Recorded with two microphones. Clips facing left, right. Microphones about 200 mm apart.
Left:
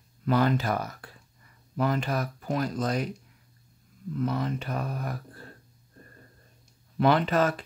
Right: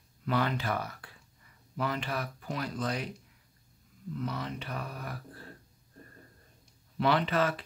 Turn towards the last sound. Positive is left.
turn(degrees=45)  # may be behind; listen again after turning